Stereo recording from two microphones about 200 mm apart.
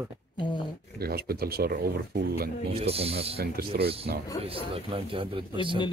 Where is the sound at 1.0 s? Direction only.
50° right (ahead or behind).